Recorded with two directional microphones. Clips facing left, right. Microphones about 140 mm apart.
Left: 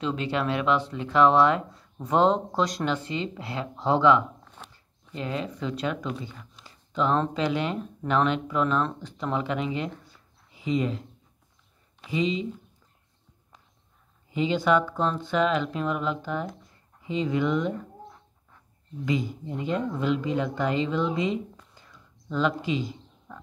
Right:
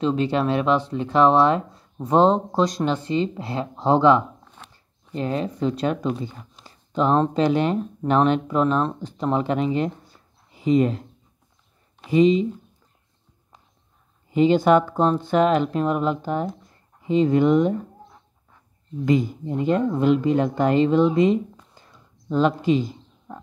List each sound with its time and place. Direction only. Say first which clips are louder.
0.0 s speech: right 6 dB; 35° right (ahead or behind)
10.5 s speech: right 8 dB; 50° right (ahead or behind)
14.3 s speech: right 7 dB; 50° right (ahead or behind)
19.0 s speech: right 7 dB; 50° right (ahead or behind)
21.7 s a sound: right 2 dB; 35° right (ahead or behind)